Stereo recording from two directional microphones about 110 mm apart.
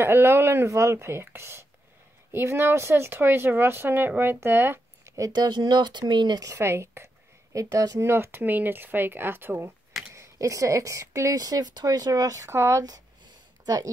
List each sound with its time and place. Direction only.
0.0 s speech: 20° right (ahead or behind)
5.3 s speech: 40° right (ahead or behind)
8.0 s speech: 20° right (ahead or behind)